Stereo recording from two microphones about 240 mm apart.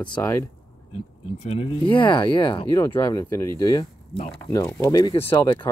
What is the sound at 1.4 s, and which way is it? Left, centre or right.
Speech, left.